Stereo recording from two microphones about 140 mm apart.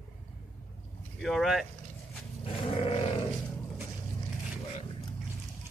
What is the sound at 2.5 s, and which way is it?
Speech, 40° left (ahead or behind).